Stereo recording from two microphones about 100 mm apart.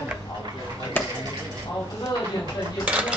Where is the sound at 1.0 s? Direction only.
15° left (ahead or behind).